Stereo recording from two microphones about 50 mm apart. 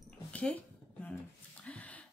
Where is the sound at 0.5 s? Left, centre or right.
Left.